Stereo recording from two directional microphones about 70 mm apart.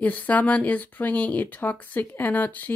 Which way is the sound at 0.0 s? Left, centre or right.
Left.